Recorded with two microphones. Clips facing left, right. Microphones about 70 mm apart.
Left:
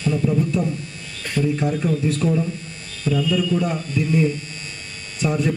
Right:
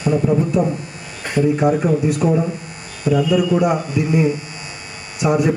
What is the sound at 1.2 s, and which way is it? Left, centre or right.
Speech, right.